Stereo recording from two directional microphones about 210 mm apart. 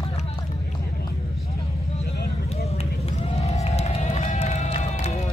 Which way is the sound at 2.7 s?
30° left (ahead or behind).